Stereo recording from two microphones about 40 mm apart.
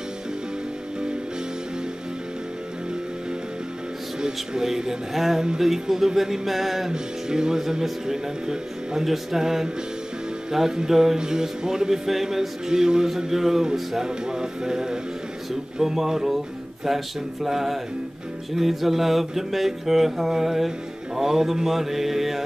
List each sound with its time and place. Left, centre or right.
4.2 s speech: centre
5.1 s mantra: centre
5.6 s music: centre
6.9 s music: centre
16.8 s mantra: centre
21.2 s music: centre